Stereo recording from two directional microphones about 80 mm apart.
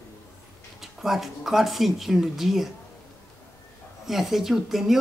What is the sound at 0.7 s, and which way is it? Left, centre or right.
Speech, centre.